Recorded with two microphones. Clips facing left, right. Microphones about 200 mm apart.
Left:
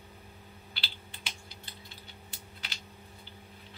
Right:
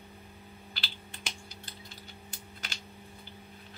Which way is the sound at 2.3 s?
45° right (ahead or behind).